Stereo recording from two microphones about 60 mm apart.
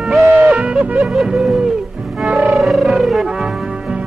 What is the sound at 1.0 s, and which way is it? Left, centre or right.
Music, centre.